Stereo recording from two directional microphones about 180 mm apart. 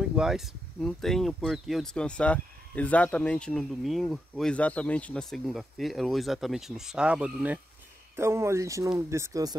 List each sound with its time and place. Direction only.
0.1 s speech: 5° right (ahead or behind); by 9.6 s 20° right (ahead or behind)